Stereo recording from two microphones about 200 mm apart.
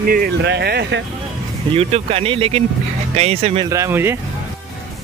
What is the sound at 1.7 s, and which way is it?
Speech, 30° right (ahead or behind).